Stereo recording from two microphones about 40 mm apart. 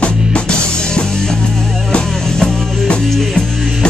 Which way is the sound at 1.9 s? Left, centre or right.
Left.